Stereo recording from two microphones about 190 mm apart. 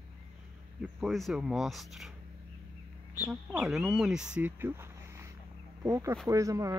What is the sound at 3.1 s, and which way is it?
Speech, 5° right (ahead or behind).